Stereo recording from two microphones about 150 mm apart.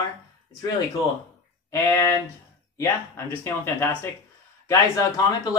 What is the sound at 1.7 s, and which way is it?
Speech, 20° left (ahead or behind).